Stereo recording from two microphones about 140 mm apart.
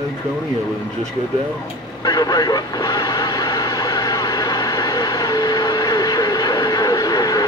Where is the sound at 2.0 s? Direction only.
25° left (ahead or behind).